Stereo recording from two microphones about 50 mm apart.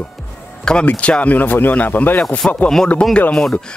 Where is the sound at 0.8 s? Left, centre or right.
Left.